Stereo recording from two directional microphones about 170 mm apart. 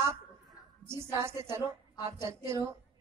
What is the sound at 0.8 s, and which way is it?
A woman's voice, 15° right (ahead or behind).